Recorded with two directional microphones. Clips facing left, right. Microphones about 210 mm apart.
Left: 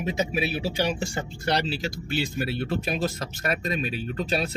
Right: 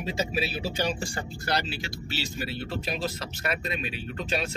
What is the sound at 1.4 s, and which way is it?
Speech, 35° left (ahead or behind).